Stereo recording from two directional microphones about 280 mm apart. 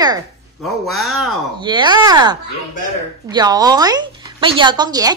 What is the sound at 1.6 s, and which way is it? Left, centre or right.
Speech, centre.